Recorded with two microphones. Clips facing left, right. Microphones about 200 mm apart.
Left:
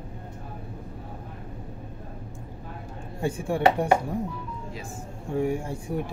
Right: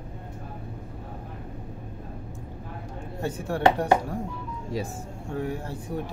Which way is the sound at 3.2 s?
10° left (ahead or behind).